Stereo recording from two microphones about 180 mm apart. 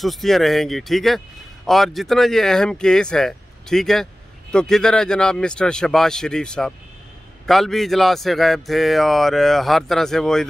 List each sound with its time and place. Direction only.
0.0 s speech: centre (ahead or behind)